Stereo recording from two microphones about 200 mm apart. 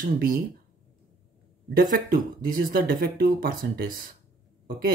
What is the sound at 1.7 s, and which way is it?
A man's voice, 45° right (ahead or behind).